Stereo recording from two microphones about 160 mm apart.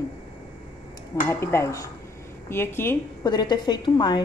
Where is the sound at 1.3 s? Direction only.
15° left (ahead or behind).